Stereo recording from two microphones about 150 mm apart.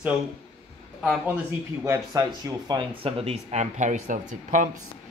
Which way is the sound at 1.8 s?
20° right (ahead or behind).